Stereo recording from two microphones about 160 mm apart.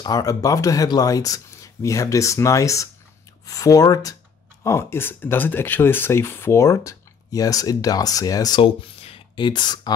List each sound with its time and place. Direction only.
0.0 s speech: 25° left (ahead or behind)